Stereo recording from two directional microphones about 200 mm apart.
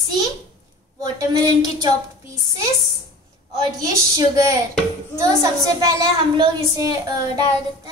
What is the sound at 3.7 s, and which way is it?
Speech, 15° right (ahead or behind).